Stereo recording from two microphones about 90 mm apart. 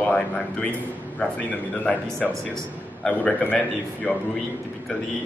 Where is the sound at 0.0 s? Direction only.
15° left (ahead or behind).